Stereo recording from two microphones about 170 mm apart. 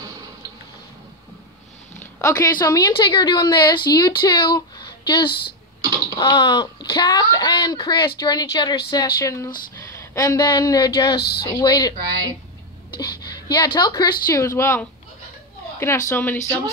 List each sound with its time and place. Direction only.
2.1 s speech: 20° left (ahead or behind)
12.9 s a sound: 25° left (ahead or behind)
13.7 s speech: 25° left (ahead or behind)